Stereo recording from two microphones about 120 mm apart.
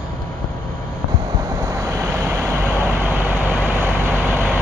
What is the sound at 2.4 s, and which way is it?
Vehicle, 20° right (ahead or behind).